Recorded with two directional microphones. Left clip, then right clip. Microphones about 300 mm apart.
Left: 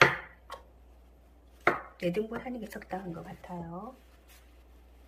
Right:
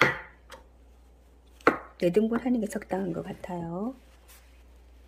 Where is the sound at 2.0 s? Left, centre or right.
Right.